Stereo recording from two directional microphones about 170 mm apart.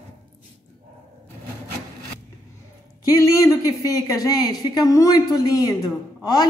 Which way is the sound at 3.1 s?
20° left (ahead or behind).